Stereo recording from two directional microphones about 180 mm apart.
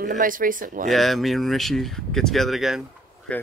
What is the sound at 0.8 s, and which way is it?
Speech, centre (ahead or behind).